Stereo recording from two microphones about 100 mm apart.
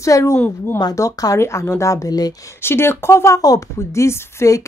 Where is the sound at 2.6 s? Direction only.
25° left (ahead or behind).